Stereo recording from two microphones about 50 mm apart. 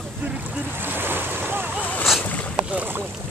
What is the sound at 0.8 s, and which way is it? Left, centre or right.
Boat, right.